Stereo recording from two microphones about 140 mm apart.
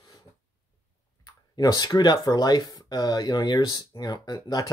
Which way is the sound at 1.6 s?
25° left (ahead or behind).